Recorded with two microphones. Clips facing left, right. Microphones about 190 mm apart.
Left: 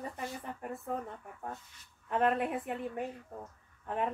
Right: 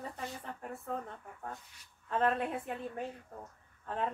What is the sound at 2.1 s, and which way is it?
A woman's voice, 15° left (ahead or behind).